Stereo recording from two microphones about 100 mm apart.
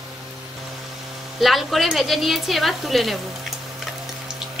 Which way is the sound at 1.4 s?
Centre (ahead or behind).